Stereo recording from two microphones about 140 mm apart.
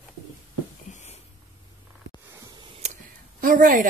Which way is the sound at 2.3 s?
25° right (ahead or behind).